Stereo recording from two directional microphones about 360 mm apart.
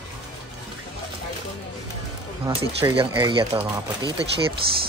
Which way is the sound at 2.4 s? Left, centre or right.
Centre.